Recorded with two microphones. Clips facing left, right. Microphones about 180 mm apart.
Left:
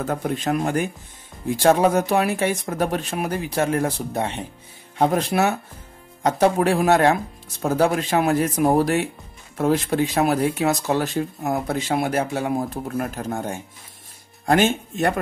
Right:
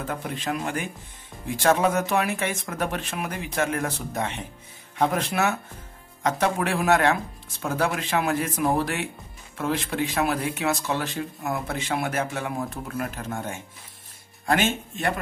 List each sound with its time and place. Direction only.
0.0 s speech: 45° left (ahead or behind)